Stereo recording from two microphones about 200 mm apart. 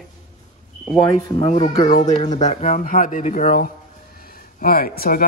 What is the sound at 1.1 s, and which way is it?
Speech, 20° left (ahead or behind).